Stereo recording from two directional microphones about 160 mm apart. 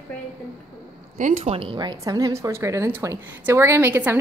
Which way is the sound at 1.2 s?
50° right (ahead or behind).